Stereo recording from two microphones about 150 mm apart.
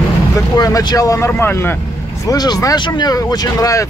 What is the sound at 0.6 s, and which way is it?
Speech, 25° left (ahead or behind).